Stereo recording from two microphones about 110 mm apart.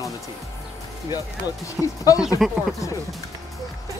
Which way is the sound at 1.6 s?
30° left (ahead or behind).